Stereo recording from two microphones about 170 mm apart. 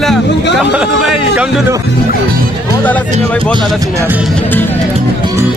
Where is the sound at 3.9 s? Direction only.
10° right (ahead or behind).